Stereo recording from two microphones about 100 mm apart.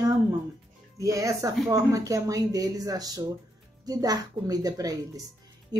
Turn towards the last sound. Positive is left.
turn(degrees=-40)  # may be behind; listen again after turning